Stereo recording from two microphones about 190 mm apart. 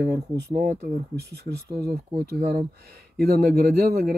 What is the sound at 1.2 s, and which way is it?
Speech, 60° right (ahead or behind).